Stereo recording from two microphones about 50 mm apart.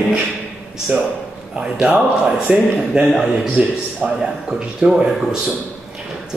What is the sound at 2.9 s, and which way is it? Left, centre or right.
Speech, centre.